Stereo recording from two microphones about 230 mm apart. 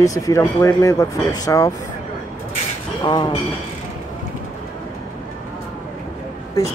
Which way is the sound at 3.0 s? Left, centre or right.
Centre.